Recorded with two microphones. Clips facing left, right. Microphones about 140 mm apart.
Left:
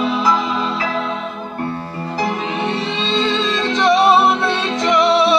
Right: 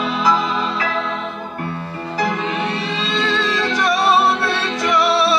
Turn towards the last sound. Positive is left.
turn(degrees=20)  # may be behind; listen again after turning